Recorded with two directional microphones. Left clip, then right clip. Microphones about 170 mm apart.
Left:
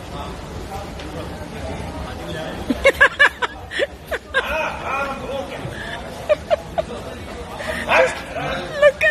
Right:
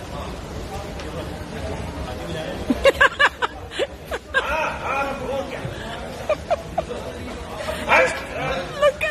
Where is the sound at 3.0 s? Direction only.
Centre (ahead or behind).